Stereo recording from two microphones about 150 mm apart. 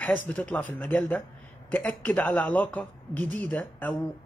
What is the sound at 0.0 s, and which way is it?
Speech, 10° left (ahead or behind).